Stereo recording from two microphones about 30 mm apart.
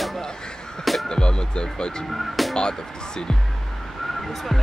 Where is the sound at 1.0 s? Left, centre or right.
Left.